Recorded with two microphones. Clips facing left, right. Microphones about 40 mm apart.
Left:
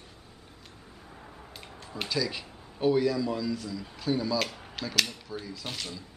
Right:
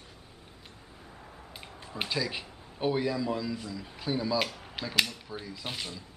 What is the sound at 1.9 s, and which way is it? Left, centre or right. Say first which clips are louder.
A man's voice: left 1 dB; right.